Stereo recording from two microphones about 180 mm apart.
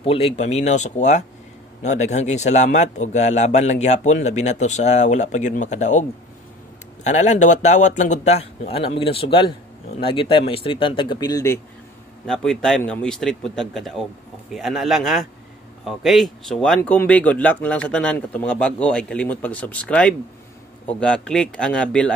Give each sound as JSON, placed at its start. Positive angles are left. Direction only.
{"t": 0.0, "sound": "speech", "side_deg": 35}
{"t": 12.3, "sound": "speech", "side_deg": 5}